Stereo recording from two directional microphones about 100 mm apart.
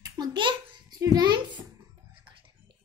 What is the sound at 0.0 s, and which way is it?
Babbling, 45° right (ahead or behind).